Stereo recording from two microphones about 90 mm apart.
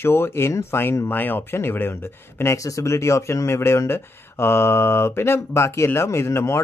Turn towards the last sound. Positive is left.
turn(degrees=30)  # may be behind; listen again after turning